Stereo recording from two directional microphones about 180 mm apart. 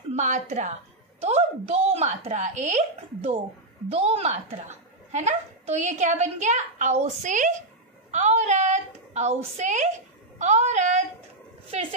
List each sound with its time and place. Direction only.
0.1 s a woman's voice: 40° right (ahead or behind)